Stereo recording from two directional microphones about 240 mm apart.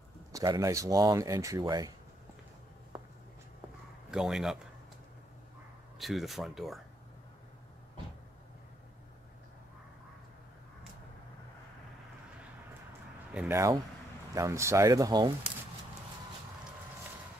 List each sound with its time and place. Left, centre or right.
0.3 s speech: centre
4.1 s speech: centre
5.9 s speech: centre
13.3 s speech: centre